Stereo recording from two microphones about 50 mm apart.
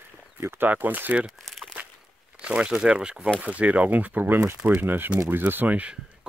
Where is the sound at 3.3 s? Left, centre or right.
Right.